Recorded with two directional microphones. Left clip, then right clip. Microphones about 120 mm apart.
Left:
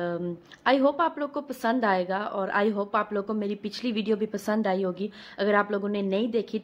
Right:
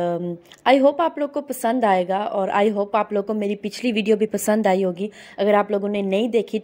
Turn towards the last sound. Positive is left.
turn(degrees=-40)  # may be behind; listen again after turning